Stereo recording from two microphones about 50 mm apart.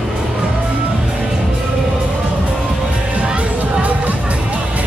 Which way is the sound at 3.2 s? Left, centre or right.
Right.